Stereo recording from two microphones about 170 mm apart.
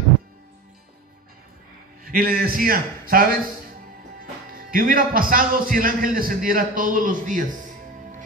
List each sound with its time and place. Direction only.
2.0 s speech: 60° right (ahead or behind)